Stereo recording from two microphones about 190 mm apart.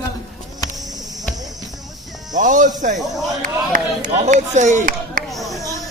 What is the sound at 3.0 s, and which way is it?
Speech, centre (ahead or behind).